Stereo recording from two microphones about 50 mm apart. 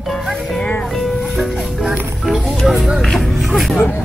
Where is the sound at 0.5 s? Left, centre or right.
Left.